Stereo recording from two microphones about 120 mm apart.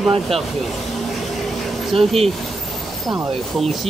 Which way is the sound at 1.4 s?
Centre (ahead or behind).